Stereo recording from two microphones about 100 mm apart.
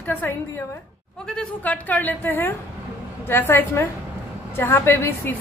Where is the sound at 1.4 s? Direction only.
15° left (ahead or behind).